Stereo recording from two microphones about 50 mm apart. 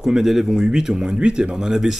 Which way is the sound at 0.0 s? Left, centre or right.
Centre.